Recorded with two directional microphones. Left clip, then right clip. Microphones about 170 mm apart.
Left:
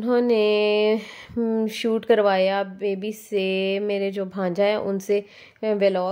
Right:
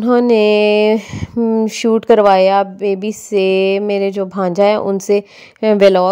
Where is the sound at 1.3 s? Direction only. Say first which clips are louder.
Right 9 dB; 30° right (ahead or behind).